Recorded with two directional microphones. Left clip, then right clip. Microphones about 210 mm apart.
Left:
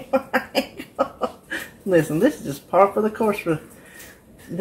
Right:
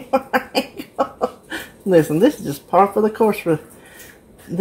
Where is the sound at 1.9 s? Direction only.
40° right (ahead or behind).